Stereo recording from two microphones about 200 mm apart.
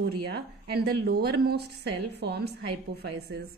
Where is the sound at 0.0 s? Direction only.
55° right (ahead or behind).